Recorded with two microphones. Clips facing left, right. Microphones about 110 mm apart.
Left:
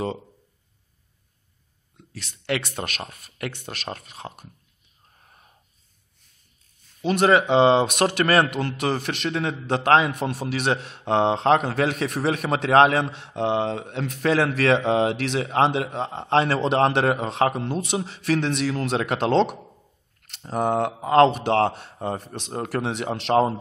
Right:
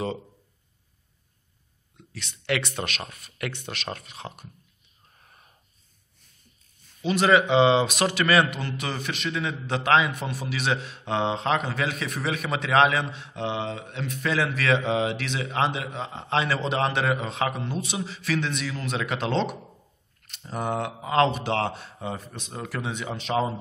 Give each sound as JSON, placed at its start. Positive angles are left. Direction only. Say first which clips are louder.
{"t": 2.1, "sound": "speech", "louder": "left 1 dB", "side_deg": 35}
{"t": 7.0, "sound": "a man's voice", "louder": "left 2 dB", "side_deg": 50}
{"t": 8.5, "sound": "a man's voice", "louder": "left 7 dB", "side_deg": 70}
{"t": 13.1, "sound": "a man's voice", "louder": "left 6 dB", "side_deg": 70}
{"t": 18.5, "sound": "a man's voice", "louder": "left 7 dB", "side_deg": 70}
{"t": 20.4, "sound": "a man's voice", "louder": "left 6 dB", "side_deg": 40}